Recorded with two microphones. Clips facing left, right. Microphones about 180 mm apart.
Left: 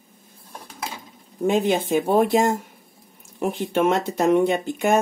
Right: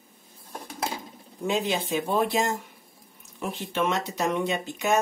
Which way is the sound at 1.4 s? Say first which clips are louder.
Left 7 dB; 50° left (ahead or behind).